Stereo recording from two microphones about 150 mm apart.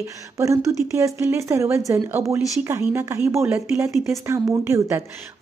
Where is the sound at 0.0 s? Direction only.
20° right (ahead or behind).